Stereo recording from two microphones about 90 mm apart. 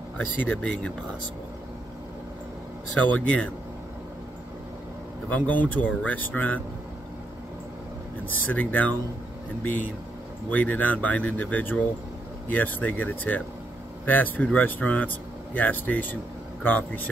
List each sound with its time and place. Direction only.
0.5 s speech: 10° left (ahead or behind)
3.2 s speech: 15° left (ahead or behind)
5.3 s speech: 15° left (ahead or behind)
8.3 s speech: 20° left (ahead or behind)